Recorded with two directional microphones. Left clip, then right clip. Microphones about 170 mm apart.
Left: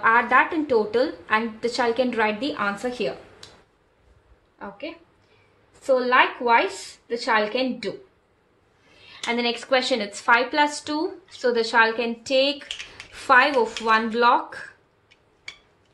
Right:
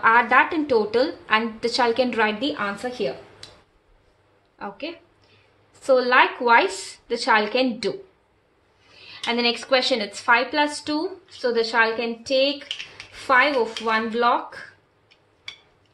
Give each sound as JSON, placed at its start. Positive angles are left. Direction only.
{"t": 0.0, "sound": "a woman's voice", "side_deg": -10}
{"t": 4.6, "sound": "a woman's voice", "side_deg": -25}
{"t": 9.0, "sound": "speech", "side_deg": -10}